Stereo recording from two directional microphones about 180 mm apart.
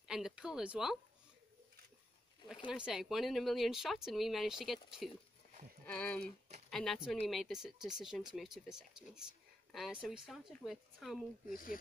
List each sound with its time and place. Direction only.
0.1 s speech: 5° right (ahead or behind)
2.7 s speech: 5° right (ahead or behind)
11.4 s speech: 50° left (ahead or behind)